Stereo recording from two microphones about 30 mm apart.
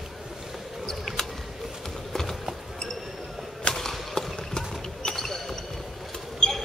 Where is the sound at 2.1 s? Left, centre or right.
Centre.